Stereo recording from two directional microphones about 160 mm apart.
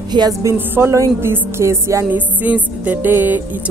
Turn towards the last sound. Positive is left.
turn(degrees=-10)  # may be behind; listen again after turning